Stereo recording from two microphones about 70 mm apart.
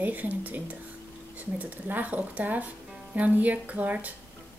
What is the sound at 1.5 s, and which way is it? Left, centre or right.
Speech, right.